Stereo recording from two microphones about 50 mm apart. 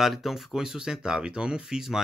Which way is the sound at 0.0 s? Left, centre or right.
Centre.